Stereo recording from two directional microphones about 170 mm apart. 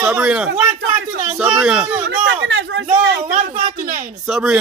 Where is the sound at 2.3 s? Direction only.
90° right.